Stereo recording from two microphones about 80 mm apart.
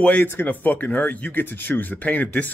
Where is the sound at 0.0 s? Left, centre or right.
Centre.